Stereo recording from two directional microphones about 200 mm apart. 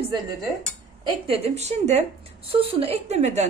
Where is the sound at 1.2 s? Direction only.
30° right (ahead or behind).